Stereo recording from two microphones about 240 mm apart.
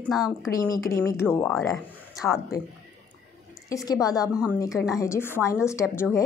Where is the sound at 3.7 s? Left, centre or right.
Centre.